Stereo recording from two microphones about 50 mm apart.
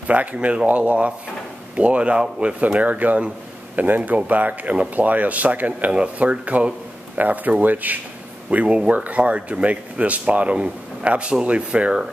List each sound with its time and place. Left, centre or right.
0.0 s speech: right
8.5 s speech: right